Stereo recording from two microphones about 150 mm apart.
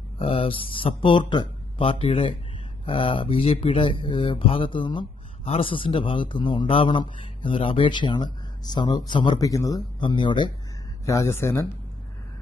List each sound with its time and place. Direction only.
0.2 s speech: 40° left (ahead or behind)
11.1 s speech: 20° left (ahead or behind)